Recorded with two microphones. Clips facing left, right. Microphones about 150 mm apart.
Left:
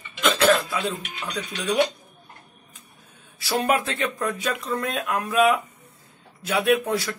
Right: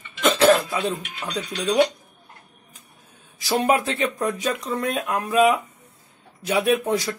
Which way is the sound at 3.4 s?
20° right (ahead or behind).